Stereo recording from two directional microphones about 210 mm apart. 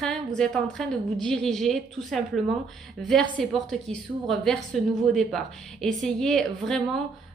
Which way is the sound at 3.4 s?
Centre (ahead or behind).